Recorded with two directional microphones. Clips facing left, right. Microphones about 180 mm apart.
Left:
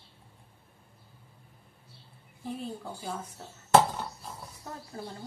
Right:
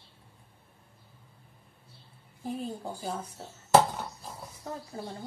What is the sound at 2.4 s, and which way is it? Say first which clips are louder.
Speech: right 2 dB; 40° right (ahead or behind).